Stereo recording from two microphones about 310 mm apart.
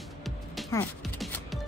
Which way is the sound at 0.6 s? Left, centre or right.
Centre.